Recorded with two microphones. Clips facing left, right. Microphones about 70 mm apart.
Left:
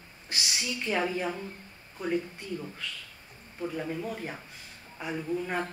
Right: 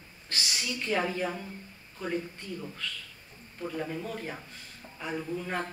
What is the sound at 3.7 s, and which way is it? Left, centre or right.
A man's voice, centre.